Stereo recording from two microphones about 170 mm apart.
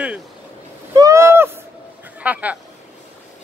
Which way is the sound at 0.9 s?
20° right (ahead or behind).